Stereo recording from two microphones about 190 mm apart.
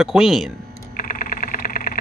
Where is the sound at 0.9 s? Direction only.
50° left (ahead or behind).